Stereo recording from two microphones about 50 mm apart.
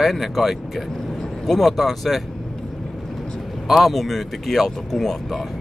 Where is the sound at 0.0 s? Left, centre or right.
Centre.